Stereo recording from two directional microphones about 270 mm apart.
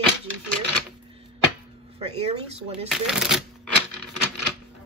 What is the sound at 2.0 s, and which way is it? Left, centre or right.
Speech, right.